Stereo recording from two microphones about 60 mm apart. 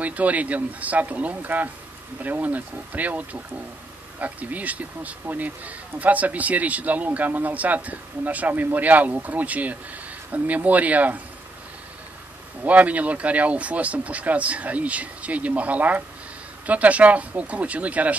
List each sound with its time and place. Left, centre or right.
0.0 s speech: right
12.6 s speech: right